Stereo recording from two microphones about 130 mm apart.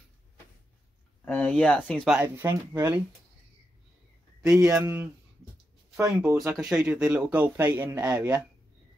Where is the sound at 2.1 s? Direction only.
15° right (ahead or behind).